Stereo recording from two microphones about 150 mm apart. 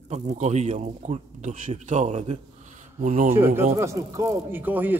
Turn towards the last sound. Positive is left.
turn(degrees=-10)  # may be behind; listen again after turning